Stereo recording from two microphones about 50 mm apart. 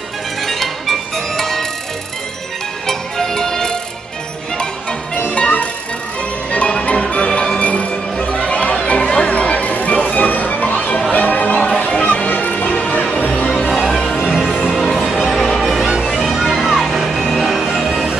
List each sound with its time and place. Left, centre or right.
0.4 s music: centre
2.9 s music: centre
5.3 s music: left
14.2 s music: centre